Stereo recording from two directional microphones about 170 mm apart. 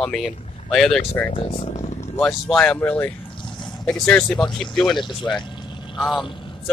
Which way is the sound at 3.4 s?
30° left (ahead or behind).